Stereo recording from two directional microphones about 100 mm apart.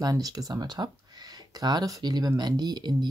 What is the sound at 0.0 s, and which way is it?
Speech, 40° right (ahead or behind).